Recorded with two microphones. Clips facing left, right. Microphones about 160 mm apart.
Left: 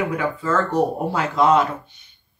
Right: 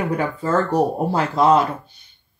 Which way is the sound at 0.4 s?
35° right (ahead or behind).